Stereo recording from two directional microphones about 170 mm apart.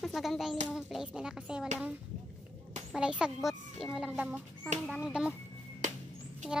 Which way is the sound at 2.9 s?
5° right (ahead or behind).